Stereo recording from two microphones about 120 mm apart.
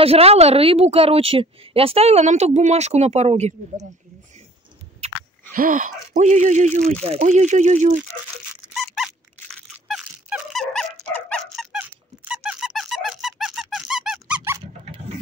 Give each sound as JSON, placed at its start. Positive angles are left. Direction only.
{"t": 0.0, "sound": "a woman's voice", "side_deg": -55}
{"t": 5.7, "sound": "speech", "side_deg": -85}
{"t": 8.7, "sound": "squeak", "side_deg": 0}
{"t": 11.1, "sound": "dog", "side_deg": 5}
{"t": 12.3, "sound": "squeak", "side_deg": -5}